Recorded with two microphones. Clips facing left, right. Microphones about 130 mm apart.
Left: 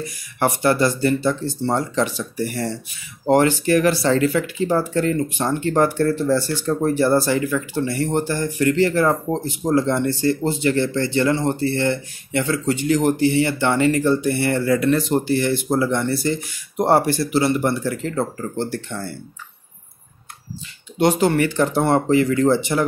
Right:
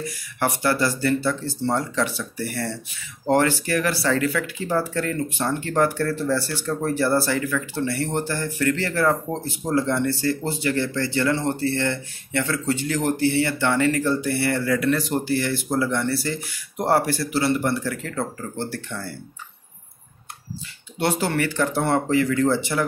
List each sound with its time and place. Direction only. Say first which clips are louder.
0.4 s speech: left 4 dB; 20° left (ahead or behind)
21.0 s speech: left 6 dB; 20° left (ahead or behind)